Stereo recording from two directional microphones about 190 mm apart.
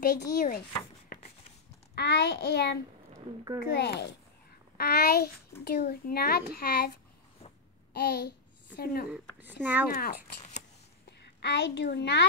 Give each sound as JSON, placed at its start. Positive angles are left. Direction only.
{"t": 0.0, "sound": "a child's voice", "side_deg": 50}
{"t": 1.0, "sound": "a sound", "side_deg": 45}
{"t": 2.0, "sound": "a child's voice", "side_deg": 60}
{"t": 7.9, "sound": "a child's voice", "side_deg": 60}
{"t": 9.1, "sound": "speech", "side_deg": -10}
{"t": 9.9, "sound": "speech", "side_deg": 40}
{"t": 11.1, "sound": "a woman's voice", "side_deg": 65}